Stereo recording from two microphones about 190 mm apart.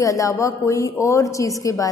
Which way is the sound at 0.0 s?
15° left (ahead or behind).